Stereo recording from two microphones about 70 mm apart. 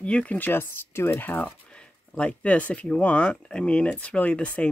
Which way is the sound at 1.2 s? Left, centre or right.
Left.